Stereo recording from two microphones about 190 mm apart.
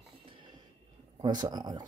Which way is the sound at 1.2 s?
20° right (ahead or behind).